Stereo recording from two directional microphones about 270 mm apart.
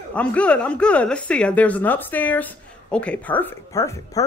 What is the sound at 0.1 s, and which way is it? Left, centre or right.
A woman's voice, centre.